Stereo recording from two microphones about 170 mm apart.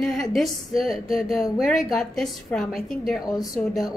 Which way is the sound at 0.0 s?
Centre (ahead or behind).